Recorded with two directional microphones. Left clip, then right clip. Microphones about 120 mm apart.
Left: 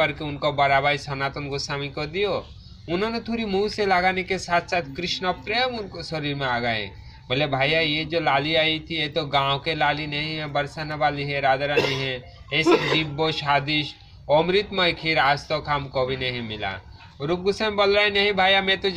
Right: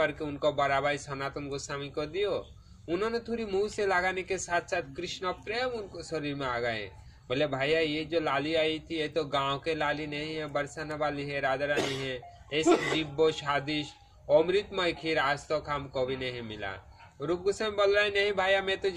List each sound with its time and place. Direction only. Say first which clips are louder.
0.7 s speech: left 8 dB; 45° right (ahead or behind)
11.7 s speech: left 8 dB; 65° right (ahead or behind)
12.0 s speech: left 7 dB; 40° right (ahead or behind)